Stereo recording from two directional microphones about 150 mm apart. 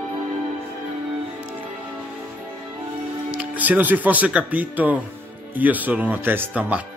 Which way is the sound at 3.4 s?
10° right (ahead or behind).